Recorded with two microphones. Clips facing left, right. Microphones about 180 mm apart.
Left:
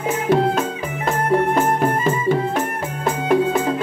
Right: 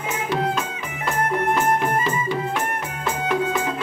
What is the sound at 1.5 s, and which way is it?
Music, 45° left (ahead or behind).